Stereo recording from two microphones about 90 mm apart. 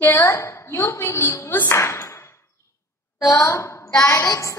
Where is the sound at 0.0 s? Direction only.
30° left (ahead or behind).